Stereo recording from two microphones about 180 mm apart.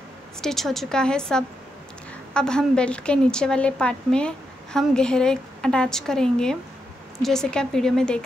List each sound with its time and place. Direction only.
0.4 s a woman's voice: centre (ahead or behind)